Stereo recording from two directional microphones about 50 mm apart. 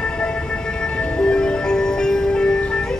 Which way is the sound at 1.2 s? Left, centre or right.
Centre.